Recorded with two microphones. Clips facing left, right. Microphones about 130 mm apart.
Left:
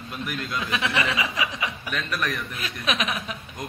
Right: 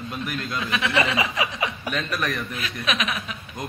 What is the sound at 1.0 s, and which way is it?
Speech, 30° right (ahead or behind).